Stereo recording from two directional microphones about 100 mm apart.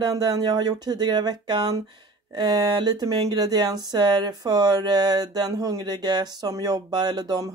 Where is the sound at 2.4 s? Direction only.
45° right (ahead or behind).